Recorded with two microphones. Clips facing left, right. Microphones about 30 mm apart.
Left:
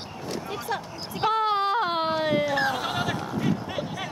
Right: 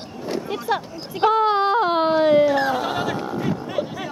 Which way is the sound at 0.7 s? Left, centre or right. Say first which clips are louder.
Right 8 dB; right.